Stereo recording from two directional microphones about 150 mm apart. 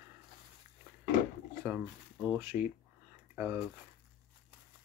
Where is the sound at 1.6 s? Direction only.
10° right (ahead or behind).